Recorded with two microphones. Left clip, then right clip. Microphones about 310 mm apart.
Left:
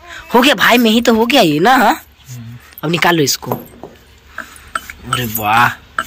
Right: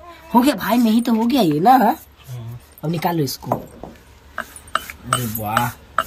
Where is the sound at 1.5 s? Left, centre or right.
Centre.